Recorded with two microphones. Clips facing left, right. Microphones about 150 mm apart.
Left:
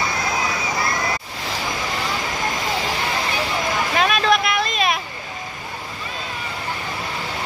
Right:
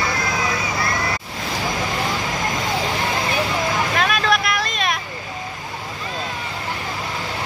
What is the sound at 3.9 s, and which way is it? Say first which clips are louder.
Music: left 4 dB; centre (ahead or behind).